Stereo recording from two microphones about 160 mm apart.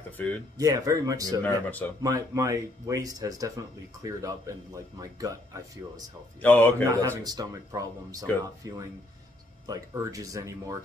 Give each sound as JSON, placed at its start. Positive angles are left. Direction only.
{"t": 0.2, "sound": "speech", "side_deg": 10}
{"t": 0.6, "sound": "speech", "side_deg": -20}
{"t": 1.7, "sound": "speech", "side_deg": 10}
{"t": 2.0, "sound": "speech", "side_deg": -20}
{"t": 6.4, "sound": "speech", "side_deg": 10}
{"t": 6.8, "sound": "speech", "side_deg": -20}